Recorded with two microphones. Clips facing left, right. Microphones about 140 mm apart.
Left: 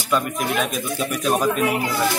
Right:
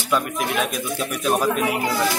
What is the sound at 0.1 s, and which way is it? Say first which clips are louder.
A man's voice: left 1 dB; centre (ahead or behind).